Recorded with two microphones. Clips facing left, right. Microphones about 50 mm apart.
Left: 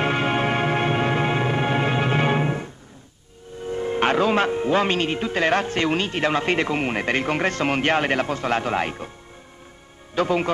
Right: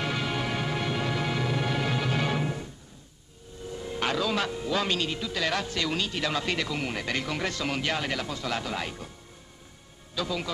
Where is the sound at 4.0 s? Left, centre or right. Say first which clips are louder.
Left 8 dB; left.